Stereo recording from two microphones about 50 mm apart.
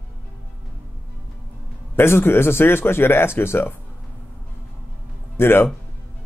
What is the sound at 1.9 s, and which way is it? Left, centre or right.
Speech, left.